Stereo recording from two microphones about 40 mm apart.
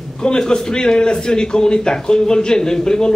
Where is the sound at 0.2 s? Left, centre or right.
Left.